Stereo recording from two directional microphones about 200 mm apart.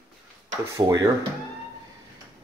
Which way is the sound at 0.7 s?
15° right (ahead or behind).